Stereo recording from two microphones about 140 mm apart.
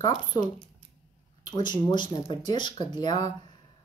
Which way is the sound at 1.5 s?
30° left (ahead or behind).